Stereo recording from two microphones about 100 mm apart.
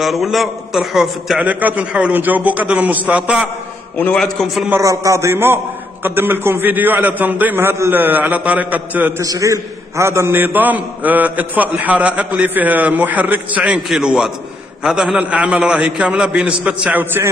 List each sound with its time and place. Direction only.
0.0 s a man's voice: centre (ahead or behind)
1.4 s a man's voice: 15° right (ahead or behind)
4.2 s a man's voice: centre (ahead or behind)
4.8 s a man's voice: 30° right (ahead or behind); by 9.1 s 15° right (ahead or behind)
9.2 s a man's voice: 35° right (ahead or behind)